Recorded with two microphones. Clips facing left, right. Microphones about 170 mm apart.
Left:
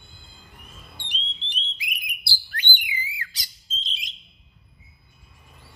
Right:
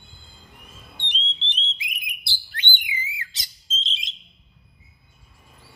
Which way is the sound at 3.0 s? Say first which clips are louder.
Even; 20° right (ahead or behind).